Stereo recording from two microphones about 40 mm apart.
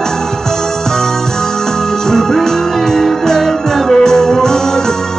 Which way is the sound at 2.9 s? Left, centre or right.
Centre.